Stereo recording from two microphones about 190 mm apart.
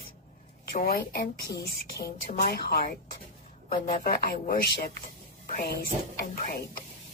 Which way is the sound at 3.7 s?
35° left (ahead or behind).